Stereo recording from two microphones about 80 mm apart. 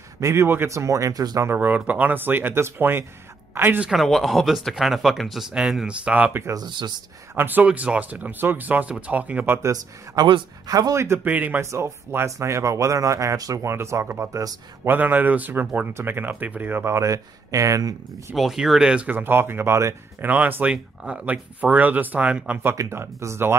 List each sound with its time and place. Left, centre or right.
0.2 s speech: right
1.4 s speech: right
3.8 s speech: centre
6.5 s speech: right
7.3 s speech: right
10.2 s speech: right
11.2 s speech: centre
11.6 s speech: right
18.3 s speech: centre
19.0 s speech: right
20.2 s speech: right
22.8 s speech: right